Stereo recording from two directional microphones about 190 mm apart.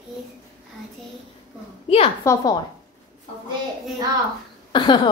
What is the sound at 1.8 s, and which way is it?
Speech, 30° left (ahead or behind).